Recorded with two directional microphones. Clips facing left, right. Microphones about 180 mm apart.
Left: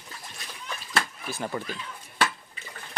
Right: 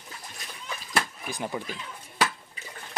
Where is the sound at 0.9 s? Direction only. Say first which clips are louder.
Even; 15° right (ahead or behind).